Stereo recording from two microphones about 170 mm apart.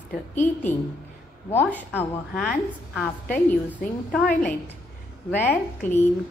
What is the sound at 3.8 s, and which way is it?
Speech, 10° left (ahead or behind).